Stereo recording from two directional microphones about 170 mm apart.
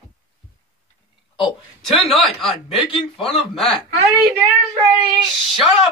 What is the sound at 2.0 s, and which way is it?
Speech, 35° left (ahead or behind).